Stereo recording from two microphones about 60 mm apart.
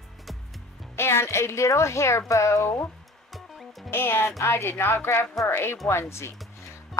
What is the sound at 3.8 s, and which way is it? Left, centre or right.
A woman's voice, left.